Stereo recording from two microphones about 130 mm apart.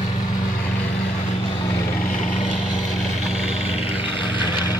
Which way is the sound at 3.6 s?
50° left (ahead or behind).